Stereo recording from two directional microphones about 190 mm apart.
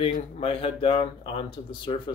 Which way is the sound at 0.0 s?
30° left (ahead or behind).